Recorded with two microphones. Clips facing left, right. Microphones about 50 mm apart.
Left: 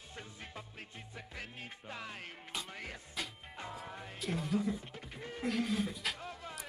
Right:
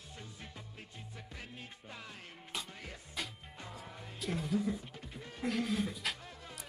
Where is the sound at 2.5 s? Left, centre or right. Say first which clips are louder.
Left 1 dB; centre.